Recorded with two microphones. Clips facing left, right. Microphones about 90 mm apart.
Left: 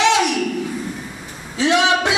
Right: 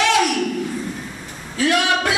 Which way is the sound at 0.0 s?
20° left (ahead or behind).